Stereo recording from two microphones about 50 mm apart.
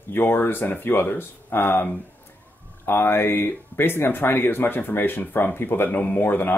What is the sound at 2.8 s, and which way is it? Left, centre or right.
Speech, left.